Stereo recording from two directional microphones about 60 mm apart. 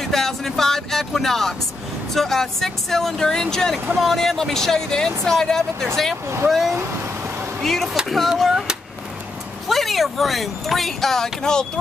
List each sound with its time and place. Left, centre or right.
0.0 s speech: centre
6.2 s speech: right
7.6 s speech: centre
9.7 s speech: centre